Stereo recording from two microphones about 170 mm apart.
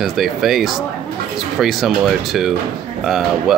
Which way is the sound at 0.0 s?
Centre (ahead or behind).